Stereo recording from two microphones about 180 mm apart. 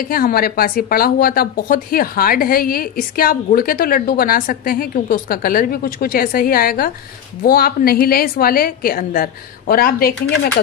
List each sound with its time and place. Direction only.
0.0 s a woman's voice: 55° left (ahead or behind)